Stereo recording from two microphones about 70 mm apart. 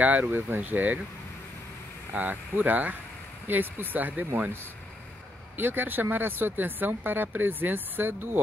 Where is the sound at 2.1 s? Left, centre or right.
Right.